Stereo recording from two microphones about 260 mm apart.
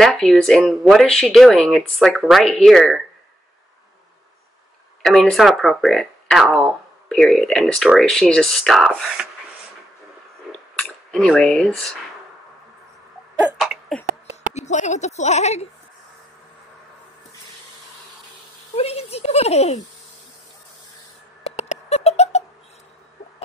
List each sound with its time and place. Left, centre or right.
0.0 s speech: centre
5.0 s speech: centre
10.8 s speech: centre
13.6 s a sound: centre
14.5 s speech: left
18.8 s speech: left
21.5 s a sound: left